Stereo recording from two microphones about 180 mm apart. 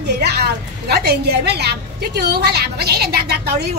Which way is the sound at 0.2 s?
65° right (ahead or behind).